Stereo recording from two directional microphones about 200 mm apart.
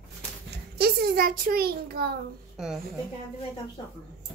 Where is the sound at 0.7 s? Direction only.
50° right (ahead or behind).